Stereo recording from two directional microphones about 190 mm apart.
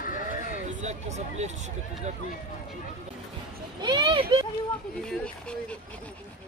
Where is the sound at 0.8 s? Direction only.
35° right (ahead or behind).